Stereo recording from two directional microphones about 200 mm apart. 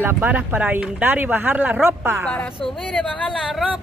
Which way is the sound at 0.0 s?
10° right (ahead or behind).